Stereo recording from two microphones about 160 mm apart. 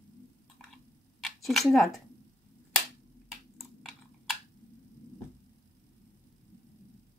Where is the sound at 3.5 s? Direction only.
Centre (ahead or behind).